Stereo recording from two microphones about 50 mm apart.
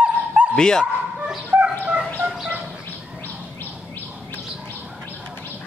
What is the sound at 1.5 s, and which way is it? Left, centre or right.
Fowl, right.